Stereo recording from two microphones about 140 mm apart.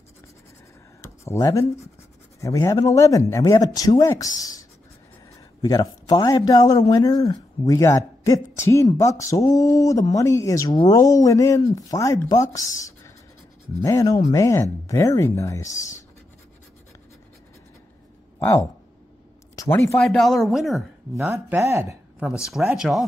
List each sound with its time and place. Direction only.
1.0 s a sound: 20° left (ahead or behind)
2.4 s speech: 25° left (ahead or behind)
18.4 s speech: 20° left (ahead or behind)
20.0 s speech: centre (ahead or behind)
21.3 s speech: 20° right (ahead or behind)
22.4 s speech: 5° right (ahead or behind)